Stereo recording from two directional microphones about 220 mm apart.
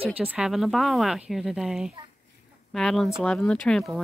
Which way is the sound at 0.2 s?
5° right (ahead or behind).